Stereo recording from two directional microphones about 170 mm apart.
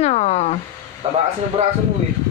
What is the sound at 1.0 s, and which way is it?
Speech, 40° right (ahead or behind).